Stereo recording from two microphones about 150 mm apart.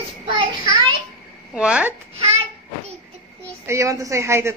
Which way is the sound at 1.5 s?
5° right (ahead or behind).